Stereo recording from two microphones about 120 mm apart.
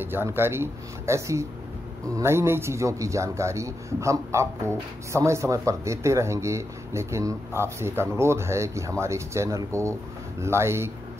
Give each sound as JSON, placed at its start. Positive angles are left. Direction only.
{"t": 0.0, "sound": "speech", "side_deg": -20}